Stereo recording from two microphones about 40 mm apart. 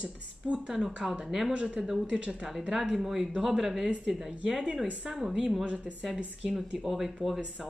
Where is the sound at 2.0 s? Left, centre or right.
Right.